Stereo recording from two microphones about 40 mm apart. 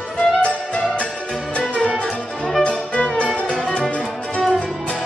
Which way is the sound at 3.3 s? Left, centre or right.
Left.